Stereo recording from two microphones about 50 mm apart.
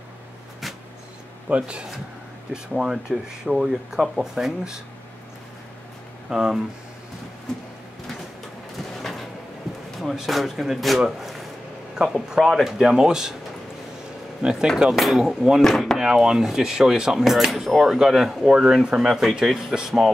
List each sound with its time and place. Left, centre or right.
1.5 s speech: right
6.3 s speech: centre
8.7 s a sound: centre
9.9 s speech: centre
11.9 s speech: centre
14.4 s speech: centre
15.0 s speech: centre
16.0 s speech: centre
18.9 s speech: centre